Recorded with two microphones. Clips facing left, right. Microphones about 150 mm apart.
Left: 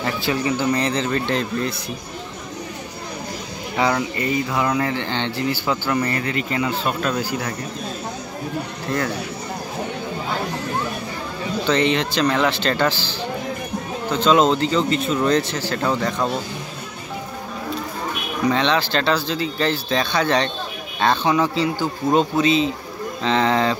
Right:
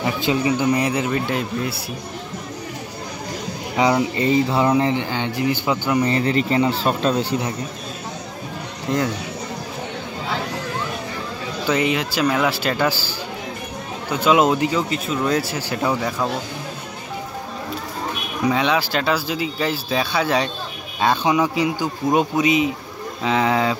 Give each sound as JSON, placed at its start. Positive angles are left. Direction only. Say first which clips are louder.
{"t": 0.0, "sound": "speech", "louder": "right 2 dB", "side_deg": -15}
{"t": 3.7, "sound": "speech", "louder": "right 3 dB", "side_deg": -15}
{"t": 5.0, "sound": "speech", "louder": "right 1 dB", "side_deg": -10}
{"t": 6.2, "sound": "speech", "louder": "right 5 dB", "side_deg": -30}
{"t": 8.8, "sound": "speech", "louder": "right 3 dB", "side_deg": -15}
{"t": 11.6, "sound": "speech", "louder": "left 1 dB", "side_deg": -5}
{"t": 14.1, "sound": "speech", "louder": "even", "side_deg": -10}
{"t": 18.4, "sound": "speech", "louder": "even", "side_deg": -10}